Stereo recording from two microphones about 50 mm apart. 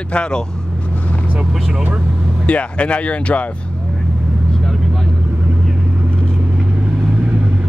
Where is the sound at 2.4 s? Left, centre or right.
Left.